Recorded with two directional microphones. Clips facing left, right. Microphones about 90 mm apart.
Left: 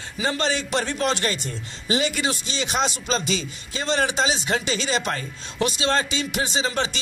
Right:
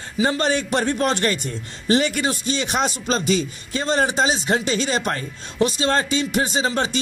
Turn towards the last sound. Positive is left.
turn(degrees=-45)  # may be behind; listen again after turning